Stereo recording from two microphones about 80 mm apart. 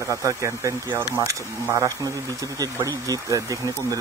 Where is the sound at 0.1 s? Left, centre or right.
Right.